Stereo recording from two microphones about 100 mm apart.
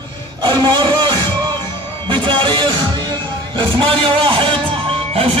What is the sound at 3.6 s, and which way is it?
Speech, 55° right (ahead or behind).